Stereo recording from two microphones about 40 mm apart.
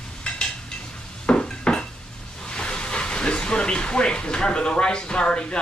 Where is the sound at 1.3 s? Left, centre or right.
Left.